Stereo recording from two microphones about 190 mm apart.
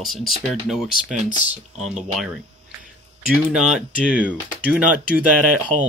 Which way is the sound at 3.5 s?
5° right (ahead or behind).